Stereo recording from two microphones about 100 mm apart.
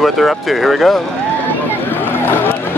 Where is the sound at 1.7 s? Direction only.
20° left (ahead or behind).